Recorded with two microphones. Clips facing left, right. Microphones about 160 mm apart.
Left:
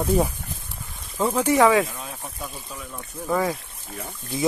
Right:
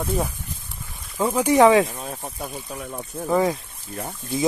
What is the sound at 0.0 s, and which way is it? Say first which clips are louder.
Speech: left 4 dB; 10° left (ahead or behind).